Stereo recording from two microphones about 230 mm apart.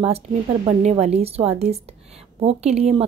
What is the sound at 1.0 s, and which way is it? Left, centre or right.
A woman's voice, right.